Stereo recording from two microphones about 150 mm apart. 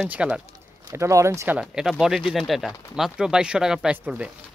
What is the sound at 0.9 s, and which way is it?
Speech, 20° right (ahead or behind).